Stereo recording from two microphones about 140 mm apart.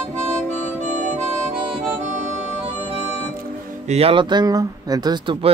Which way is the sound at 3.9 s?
45° right (ahead or behind).